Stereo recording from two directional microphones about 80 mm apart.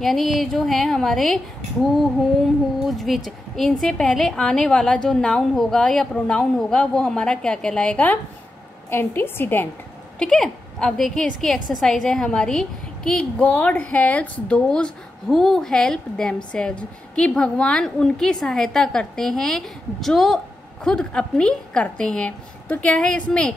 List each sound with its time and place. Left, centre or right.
0.0 s a woman's voice: centre
2.8 s a woman's voice: centre
8.9 s a woman's voice: left
10.1 s a woman's voice: centre